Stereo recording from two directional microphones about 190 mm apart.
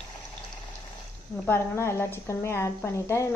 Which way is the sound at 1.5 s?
15° left (ahead or behind).